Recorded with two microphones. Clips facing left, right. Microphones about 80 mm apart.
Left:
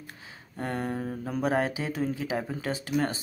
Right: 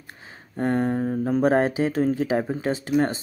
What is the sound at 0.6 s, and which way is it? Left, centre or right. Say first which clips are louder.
Speech: right 9 dB; right.